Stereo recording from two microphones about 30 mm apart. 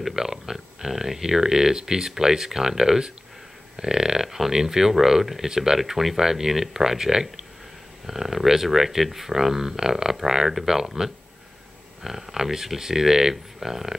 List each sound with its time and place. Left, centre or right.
0.1 s speech: centre
5.8 s speech: centre
6.1 s speech: centre